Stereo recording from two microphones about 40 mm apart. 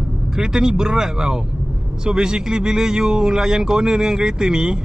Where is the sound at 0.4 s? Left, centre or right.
Centre.